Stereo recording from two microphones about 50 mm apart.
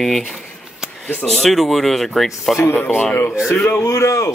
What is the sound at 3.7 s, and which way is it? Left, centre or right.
Speech, left.